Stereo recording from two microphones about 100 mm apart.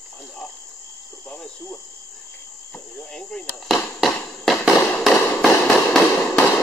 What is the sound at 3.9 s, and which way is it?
Fireworks, centre (ahead or behind).